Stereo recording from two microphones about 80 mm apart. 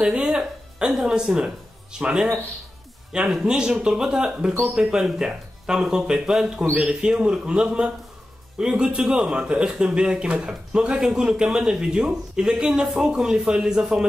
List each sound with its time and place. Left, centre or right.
0.0 s a man's voice: centre